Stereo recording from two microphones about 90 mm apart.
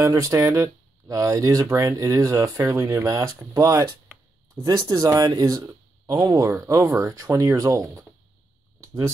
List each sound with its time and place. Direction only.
0.0 s speech: 40° right (ahead or behind)
6.3 s speech: 35° right (ahead or behind)
8.8 s a sound: 35° right (ahead or behind)